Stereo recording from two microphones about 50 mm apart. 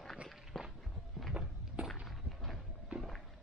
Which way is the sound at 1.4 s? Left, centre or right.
Right.